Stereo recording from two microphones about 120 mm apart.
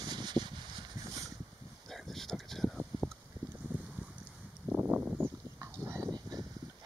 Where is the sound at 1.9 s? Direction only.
Centre (ahead or behind).